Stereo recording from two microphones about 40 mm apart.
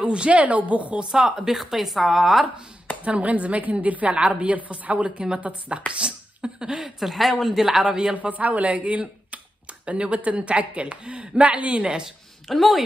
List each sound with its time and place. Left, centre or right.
0.0 s speech: right
0.9 s a woman's voice: centre
3.0 s speech: right
5.9 s a sound: right
7.0 s speech: centre
8.2 s speech: right
12.4 s a woman's voice: centre